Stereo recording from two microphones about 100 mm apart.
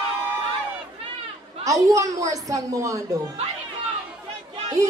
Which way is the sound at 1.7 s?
35° right (ahead or behind).